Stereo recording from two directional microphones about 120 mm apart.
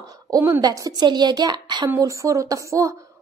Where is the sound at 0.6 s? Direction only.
30° right (ahead or behind).